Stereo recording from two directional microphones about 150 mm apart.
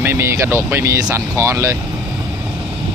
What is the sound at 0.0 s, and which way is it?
Speech, 15° right (ahead or behind).